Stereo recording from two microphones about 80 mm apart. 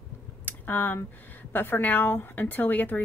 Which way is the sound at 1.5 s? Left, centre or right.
Left.